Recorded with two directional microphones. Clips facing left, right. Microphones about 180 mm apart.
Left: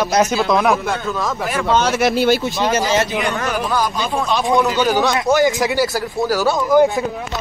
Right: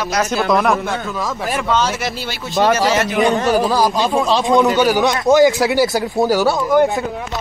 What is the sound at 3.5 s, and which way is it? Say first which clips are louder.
Speech: right 5 dB; 35° right (ahead or behind).